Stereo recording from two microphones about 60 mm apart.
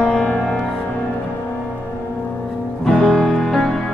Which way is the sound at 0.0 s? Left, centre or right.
Centre.